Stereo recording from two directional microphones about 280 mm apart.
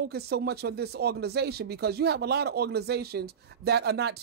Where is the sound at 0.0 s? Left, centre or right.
Right.